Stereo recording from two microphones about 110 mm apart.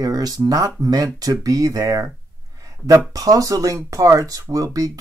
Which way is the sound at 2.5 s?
30° right (ahead or behind).